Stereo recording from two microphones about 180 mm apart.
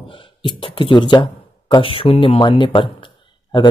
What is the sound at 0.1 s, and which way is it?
Speech, 25° left (ahead or behind).